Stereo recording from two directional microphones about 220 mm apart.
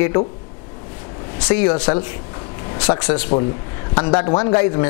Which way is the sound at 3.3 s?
20° left (ahead or behind).